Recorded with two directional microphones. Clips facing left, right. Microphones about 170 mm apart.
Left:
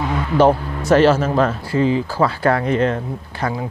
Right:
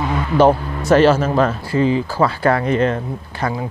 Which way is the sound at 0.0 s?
15° right (ahead or behind).